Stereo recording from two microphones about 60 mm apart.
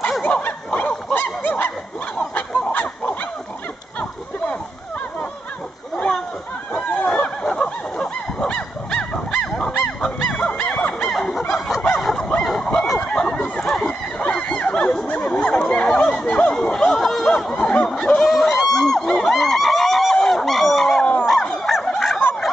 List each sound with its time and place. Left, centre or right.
0.2 s snicker: left
0.7 s goose: left
2.1 s fowl: centre
7.2 s honk: centre
10.3 s dog: centre
11.1 s honk: centre
12.0 s neigh: centre
13.0 s a sound: centre
16.5 s chatter: centre
17.8 s snicker: centre
18.2 s a sound: centre
21.0 s dog: left
21.3 s bow-wow: centre
21.8 s fowl: centre